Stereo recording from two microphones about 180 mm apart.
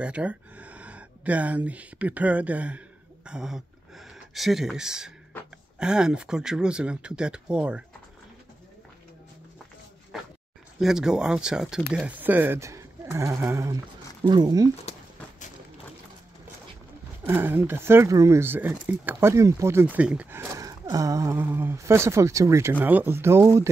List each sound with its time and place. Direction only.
0.0 s speech: 5° right (ahead or behind)
10.1 s dog: centre (ahead or behind)
10.8 s speech: 5° right (ahead or behind); by 14.7 s 20° right (ahead or behind)
17.2 s speech: 10° right (ahead or behind)